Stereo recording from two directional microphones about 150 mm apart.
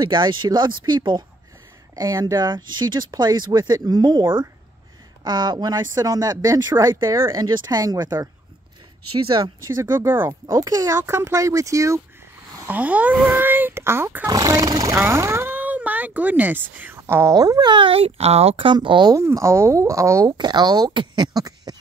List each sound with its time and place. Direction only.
0.0 s speech: 30° right (ahead or behind)
9.4 s speech: 20° right (ahead or behind)
12.6 s speech: 10° right (ahead or behind); by 21.7 s 25° right (ahead or behind)